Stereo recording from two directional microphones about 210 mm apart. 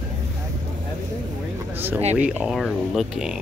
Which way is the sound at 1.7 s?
10° right (ahead or behind).